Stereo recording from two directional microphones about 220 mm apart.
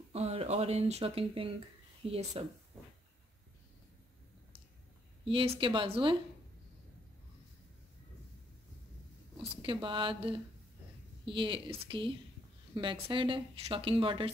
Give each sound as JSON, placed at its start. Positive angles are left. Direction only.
{"t": 0.1, "sound": "a woman's voice", "side_deg": -25}
{"t": 5.2, "sound": "a woman's voice", "side_deg": -25}
{"t": 9.6, "sound": "a woman's voice", "side_deg": -20}